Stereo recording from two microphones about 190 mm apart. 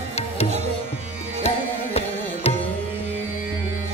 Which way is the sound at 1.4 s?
35° left (ahead or behind).